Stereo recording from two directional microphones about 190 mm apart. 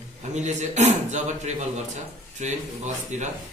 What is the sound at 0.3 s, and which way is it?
A man's voice, 40° right (ahead or behind).